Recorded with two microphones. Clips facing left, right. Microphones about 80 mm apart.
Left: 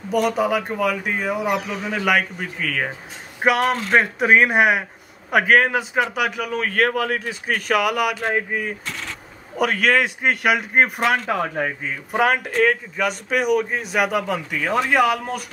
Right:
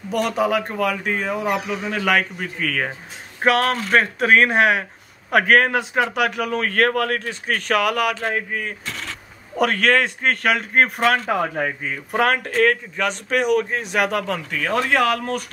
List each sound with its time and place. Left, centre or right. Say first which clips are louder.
0.1 s speech: left 1 dB; centre
11.2 s speech: right 1 dB; centre